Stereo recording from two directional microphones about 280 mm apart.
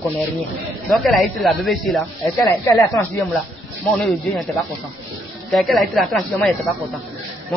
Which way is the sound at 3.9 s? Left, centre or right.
Centre.